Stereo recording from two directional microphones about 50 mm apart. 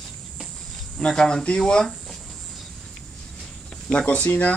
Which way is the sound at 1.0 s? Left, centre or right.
Centre.